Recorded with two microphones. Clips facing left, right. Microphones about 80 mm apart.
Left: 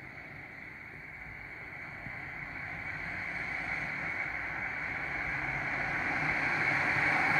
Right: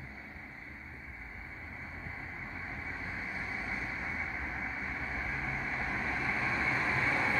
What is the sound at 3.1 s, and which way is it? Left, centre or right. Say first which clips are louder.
Vehicle: left 1 dB; centre.